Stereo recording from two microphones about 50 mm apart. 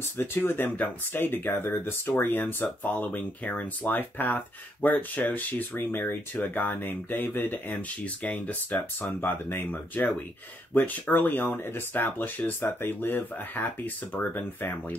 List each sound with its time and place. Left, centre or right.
0.2 s speech: left
5.9 s speech: left
8.0 s speech: left